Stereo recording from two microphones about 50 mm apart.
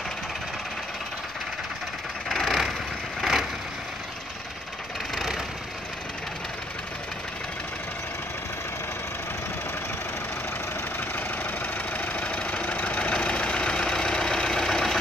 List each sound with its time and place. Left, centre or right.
2.2 s vehicle: centre
5.1 s vehicle: centre
11.1 s engine: left
13.1 s vehicle: left